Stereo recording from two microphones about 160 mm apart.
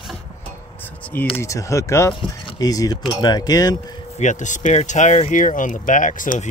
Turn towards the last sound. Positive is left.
turn(degrees=55)  # may be behind; listen again after turning